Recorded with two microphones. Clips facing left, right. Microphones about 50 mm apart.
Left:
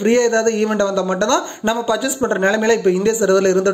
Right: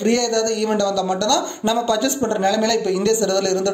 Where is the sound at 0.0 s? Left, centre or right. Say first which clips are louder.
Left 4 dB; left.